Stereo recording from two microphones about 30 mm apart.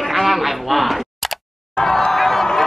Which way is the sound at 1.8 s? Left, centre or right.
Left.